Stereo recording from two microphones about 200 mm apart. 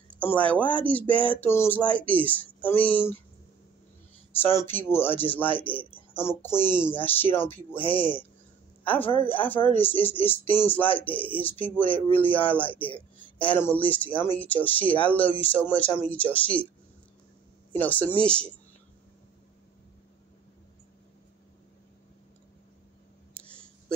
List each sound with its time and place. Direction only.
0.2 s speech: 5° left (ahead or behind)
4.3 s speech: 10° left (ahead or behind)
7.7 s speech: 25° left (ahead or behind)
9.3 s speech: 10° left (ahead or behind)
17.7 s speech: 10° left (ahead or behind)